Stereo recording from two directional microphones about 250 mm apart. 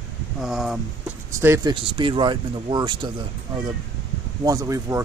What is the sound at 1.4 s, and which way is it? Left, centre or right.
Speech, centre.